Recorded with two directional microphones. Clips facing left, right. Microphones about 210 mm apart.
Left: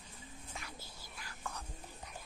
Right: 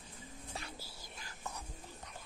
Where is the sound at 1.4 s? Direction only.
20° right (ahead or behind).